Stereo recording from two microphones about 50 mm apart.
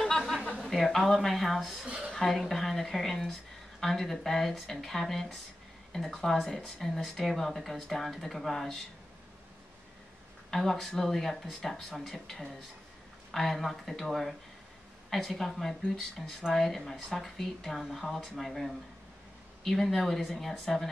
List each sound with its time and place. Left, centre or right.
0.6 s speech: centre
1.9 s a sound: right
2.1 s speech: centre
10.5 s speech: centre